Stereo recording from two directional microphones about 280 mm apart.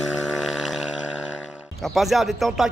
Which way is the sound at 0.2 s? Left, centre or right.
Centre.